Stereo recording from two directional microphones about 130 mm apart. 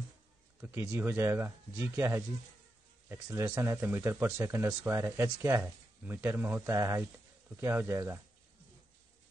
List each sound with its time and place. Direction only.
0.6 s speech: 15° right (ahead or behind)